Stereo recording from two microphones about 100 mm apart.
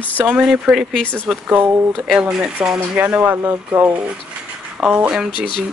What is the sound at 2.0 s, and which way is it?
Speech, 5° right (ahead or behind).